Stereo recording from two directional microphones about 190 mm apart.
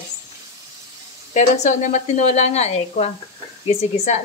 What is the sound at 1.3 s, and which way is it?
A woman's voice, 40° left (ahead or behind).